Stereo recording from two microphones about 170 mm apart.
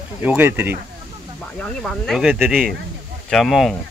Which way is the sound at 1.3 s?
5° left (ahead or behind).